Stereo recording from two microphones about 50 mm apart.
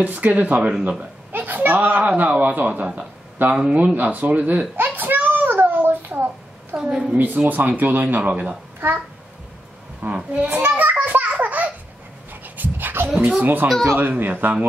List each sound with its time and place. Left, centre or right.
0.0 s a man's voice: right
0.6 s speech: centre
1.3 s a man's voice: right
3.7 s a sound: right
6.7 s a man's voice: right
8.2 s speech: right
8.7 s a child's voice: right
10.0 s speech: right
10.5 s a man's voice: right
11.1 s a sound: right
12.3 s dog: right
13.4 s a man's voice: right